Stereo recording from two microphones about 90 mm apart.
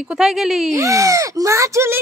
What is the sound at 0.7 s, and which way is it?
Speech, 35° right (ahead or behind).